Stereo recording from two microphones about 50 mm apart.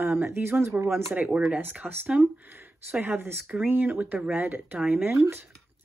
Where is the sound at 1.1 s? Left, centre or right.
Right.